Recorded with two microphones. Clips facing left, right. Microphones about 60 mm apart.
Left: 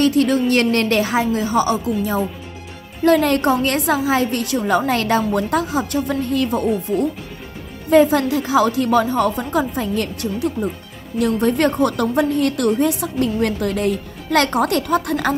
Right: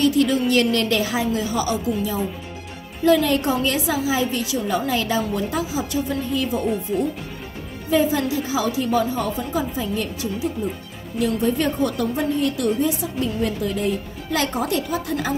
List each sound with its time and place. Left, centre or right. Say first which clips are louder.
0.0 s a woman's voice: left 3 dB; left
3.0 s a woman's voice: left 3 dB; left
7.9 s a woman's voice: left 6 dB; left